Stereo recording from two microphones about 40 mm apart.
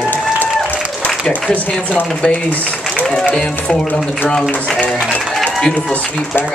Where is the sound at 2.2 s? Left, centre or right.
Left.